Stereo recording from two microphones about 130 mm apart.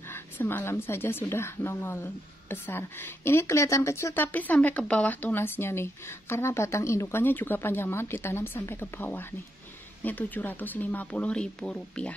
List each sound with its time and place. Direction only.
0.1 s speech: 15° left (ahead or behind)